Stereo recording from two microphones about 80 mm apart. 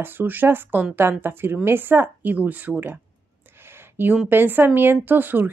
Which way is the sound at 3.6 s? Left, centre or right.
Right.